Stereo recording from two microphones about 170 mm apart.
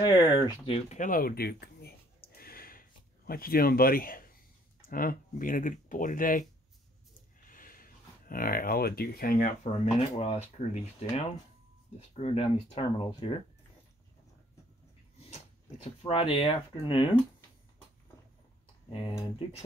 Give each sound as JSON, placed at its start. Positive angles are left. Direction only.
{"t": 0.0, "sound": "speech", "side_deg": 25}
{"t": 0.7, "sound": "a sound", "side_deg": 40}
{"t": 4.8, "sound": "speech", "side_deg": 55}
{"t": 7.4, "sound": "speech", "side_deg": 55}
{"t": 12.1, "sound": "speech", "side_deg": 35}
{"t": 15.1, "sound": "dog", "side_deg": 40}
{"t": 16.0, "sound": "speech", "side_deg": 30}
{"t": 18.9, "sound": "speech", "side_deg": 30}